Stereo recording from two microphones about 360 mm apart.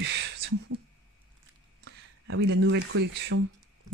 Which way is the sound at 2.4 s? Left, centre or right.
Right.